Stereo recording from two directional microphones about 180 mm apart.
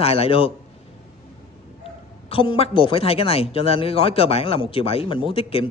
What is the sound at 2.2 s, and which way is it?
Speech, 30° left (ahead or behind).